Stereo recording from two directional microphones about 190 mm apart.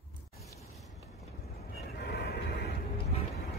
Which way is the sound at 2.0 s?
60° left (ahead or behind).